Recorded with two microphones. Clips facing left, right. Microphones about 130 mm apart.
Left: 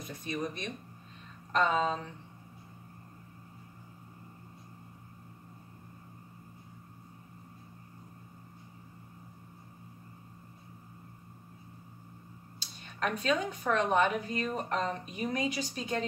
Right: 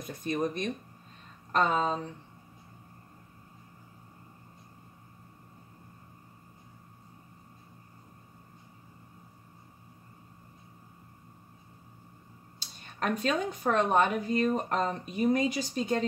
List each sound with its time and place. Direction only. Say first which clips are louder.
0.2 s speech: right 6 dB; 50° right (ahead or behind)
12.5 s speech: right 2 dB; 40° right (ahead or behind)